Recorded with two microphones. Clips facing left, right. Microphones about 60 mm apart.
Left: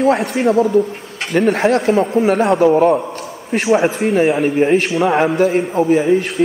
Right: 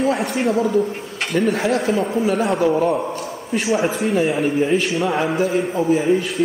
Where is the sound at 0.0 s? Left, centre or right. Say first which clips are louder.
Left 5 dB; left.